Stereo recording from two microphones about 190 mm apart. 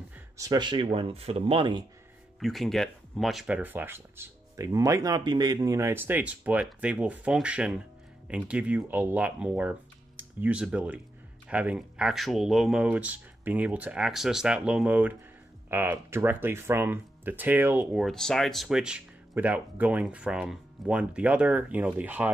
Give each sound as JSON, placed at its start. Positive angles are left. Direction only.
{"t": 0.4, "sound": "speech", "side_deg": -20}
{"t": 2.4, "sound": "speech", "side_deg": 0}